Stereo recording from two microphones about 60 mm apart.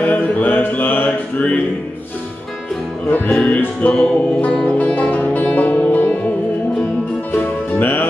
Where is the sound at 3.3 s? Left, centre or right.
Centre.